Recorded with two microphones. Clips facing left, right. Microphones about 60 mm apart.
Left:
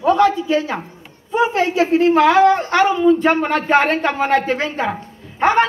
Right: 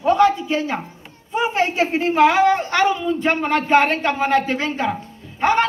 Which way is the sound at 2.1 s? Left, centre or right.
Left.